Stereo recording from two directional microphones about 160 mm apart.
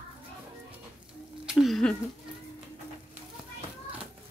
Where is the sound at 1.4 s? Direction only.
Centre (ahead or behind).